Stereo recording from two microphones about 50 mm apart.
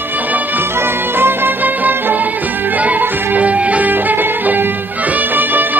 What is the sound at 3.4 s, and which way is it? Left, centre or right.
Music, right.